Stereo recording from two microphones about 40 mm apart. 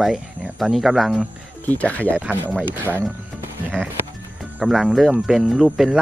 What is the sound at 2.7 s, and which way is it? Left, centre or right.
Speech, right.